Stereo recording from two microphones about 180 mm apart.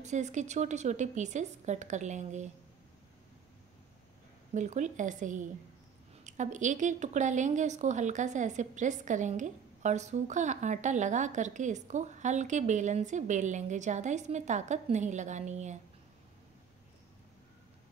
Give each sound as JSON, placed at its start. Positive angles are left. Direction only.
{"t": 0.0, "sound": "a woman's voice", "side_deg": -40}
{"t": 4.6, "sound": "a woman's voice", "side_deg": -40}